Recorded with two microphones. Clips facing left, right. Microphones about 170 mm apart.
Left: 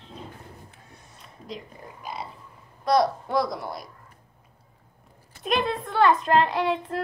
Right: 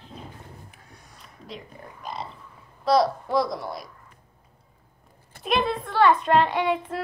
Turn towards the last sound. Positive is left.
turn(degrees=0)  # may be behind; listen again after turning